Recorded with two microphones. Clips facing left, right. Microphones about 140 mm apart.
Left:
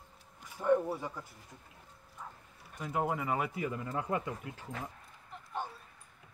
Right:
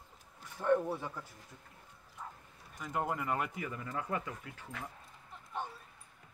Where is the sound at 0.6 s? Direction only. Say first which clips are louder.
Left 1 dB; 10° left (ahead or behind).